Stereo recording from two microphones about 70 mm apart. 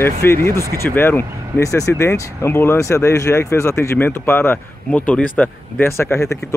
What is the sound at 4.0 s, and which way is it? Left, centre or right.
Speech, left.